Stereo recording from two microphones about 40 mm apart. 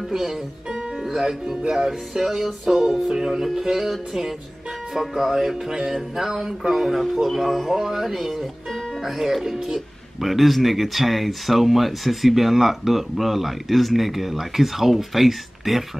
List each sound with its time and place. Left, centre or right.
0.1 s speech: centre